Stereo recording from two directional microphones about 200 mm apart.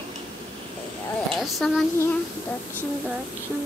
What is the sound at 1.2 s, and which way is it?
Speech, centre (ahead or behind).